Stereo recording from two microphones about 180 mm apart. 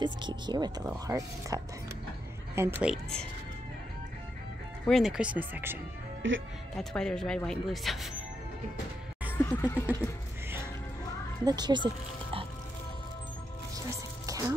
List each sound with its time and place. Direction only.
0.0 s speech: 25° right (ahead or behind); by 3.3 s centre (ahead or behind)
4.8 s speech: centre (ahead or behind)
6.2 s speech: 90° right
6.8 s speech: 5° left (ahead or behind)
9.4 s a sound: 10° left (ahead or behind)
11.4 s speech: 25° right (ahead or behind)
14.2 s music: 20° right (ahead or behind)